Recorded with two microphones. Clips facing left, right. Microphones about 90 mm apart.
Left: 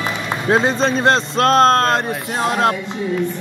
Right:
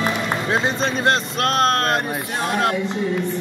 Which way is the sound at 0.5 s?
35° left (ahead or behind).